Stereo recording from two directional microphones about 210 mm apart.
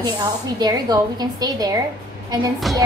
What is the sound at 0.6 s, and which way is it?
A woman's voice, 20° right (ahead or behind).